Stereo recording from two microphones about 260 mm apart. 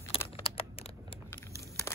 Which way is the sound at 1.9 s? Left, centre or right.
Centre.